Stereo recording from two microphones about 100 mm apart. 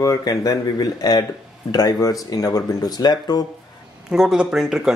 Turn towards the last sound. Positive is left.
turn(degrees=-5)  # may be behind; listen again after turning